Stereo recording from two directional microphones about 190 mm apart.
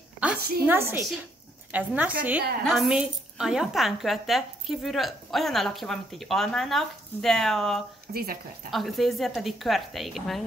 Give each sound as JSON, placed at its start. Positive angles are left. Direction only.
{"t": 0.4, "sound": "a woman's voice", "side_deg": -55}
{"t": 0.7, "sound": "a woman's voice", "side_deg": -10}
{"t": 8.1, "sound": "speech", "side_deg": -55}
{"t": 8.6, "sound": "a woman's voice", "side_deg": 0}